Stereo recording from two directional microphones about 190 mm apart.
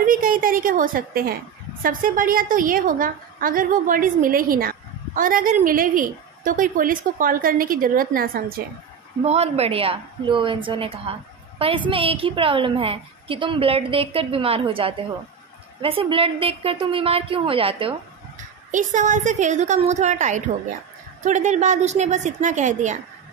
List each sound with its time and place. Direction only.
0.0 s a woman's voice: 45° right (ahead or behind)
9.2 s a woman's voice: 35° right (ahead or behind)
18.7 s a woman's voice: 40° right (ahead or behind)